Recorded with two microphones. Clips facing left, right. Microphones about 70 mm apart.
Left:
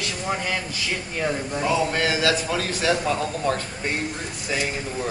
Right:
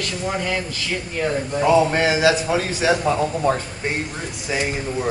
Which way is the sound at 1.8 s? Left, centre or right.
Right.